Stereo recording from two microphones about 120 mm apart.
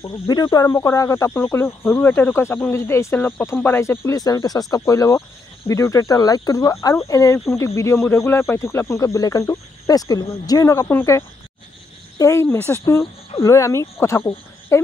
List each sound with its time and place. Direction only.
0.3 s speech: 35° left (ahead or behind)